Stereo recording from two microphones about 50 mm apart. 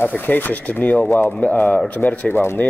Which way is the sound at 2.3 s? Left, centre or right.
Left.